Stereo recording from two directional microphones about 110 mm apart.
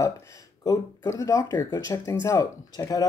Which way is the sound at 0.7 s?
30° left (ahead or behind).